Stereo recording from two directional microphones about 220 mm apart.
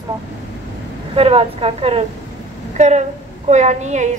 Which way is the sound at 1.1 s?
25° right (ahead or behind).